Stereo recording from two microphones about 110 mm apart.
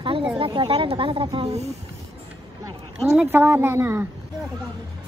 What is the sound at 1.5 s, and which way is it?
Speech, 80° right.